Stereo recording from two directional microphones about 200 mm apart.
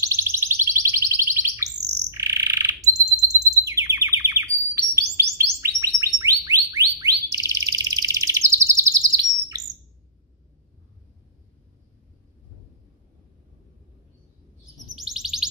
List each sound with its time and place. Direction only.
0.0 s bird: 10° right (ahead or behind)
15.0 s chirp tone: centre (ahead or behind)